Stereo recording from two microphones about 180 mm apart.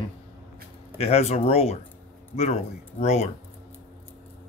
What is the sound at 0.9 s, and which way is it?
Speech, 35° left (ahead or behind).